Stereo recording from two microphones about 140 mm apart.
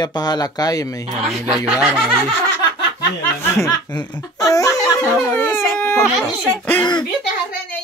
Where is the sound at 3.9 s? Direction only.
25° left (ahead or behind).